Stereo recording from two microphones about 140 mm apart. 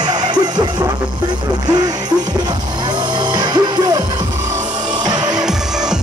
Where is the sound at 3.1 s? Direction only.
30° right (ahead or behind).